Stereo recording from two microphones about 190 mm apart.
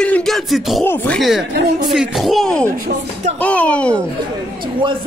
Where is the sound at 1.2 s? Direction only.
Centre (ahead or behind).